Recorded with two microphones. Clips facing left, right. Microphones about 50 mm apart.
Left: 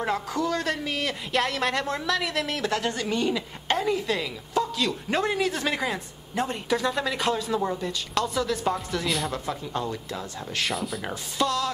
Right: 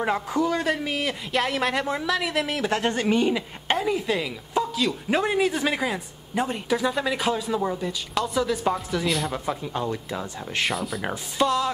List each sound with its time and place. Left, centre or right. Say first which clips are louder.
0.0 s speech: right 3 dB; centre
2.7 s a woman's voice: right 4 dB; right
3.7 s a woman's voice: right 1 dB; centre
11.1 s speech: right 4 dB; centre